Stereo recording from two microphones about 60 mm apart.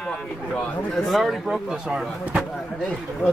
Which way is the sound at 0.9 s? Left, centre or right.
Centre.